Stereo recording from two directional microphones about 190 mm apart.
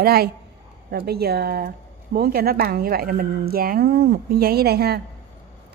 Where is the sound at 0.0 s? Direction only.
55° right (ahead or behind).